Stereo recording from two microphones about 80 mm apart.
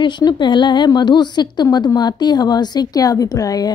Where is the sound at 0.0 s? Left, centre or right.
Left.